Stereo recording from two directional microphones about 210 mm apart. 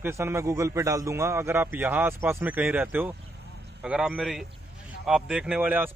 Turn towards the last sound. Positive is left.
turn(degrees=-10)  # may be behind; listen again after turning